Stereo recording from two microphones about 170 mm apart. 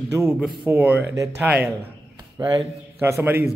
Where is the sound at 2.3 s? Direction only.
25° right (ahead or behind).